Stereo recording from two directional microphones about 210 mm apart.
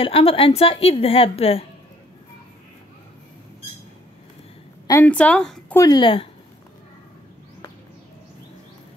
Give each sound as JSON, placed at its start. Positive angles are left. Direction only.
{"t": 0.0, "sound": "a woman's voice", "side_deg": 25}
{"t": 4.8, "sound": "a woman's voice", "side_deg": 10}
{"t": 5.8, "sound": "a woman's voice", "side_deg": 20}